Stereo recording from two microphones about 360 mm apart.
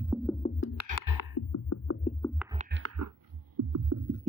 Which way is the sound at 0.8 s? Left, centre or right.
Left.